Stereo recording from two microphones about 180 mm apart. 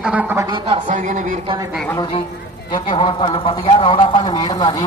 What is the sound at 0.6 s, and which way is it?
Speech, 40° right (ahead or behind).